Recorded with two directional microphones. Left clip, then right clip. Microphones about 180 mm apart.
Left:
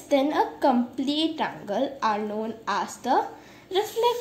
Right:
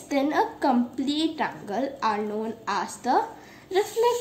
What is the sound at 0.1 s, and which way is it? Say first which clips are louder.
A woman's voice: left 1 dB; 5° left (ahead or behind).